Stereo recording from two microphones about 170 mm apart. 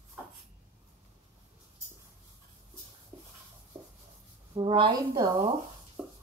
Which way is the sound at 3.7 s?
15° right (ahead or behind).